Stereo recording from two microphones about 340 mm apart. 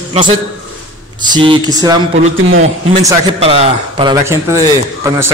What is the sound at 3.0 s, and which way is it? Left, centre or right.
A man's voice, centre.